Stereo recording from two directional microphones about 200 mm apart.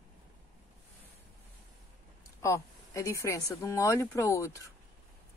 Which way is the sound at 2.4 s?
15° left (ahead or behind).